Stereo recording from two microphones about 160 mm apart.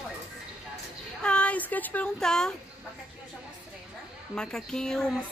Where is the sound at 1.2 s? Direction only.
5° left (ahead or behind).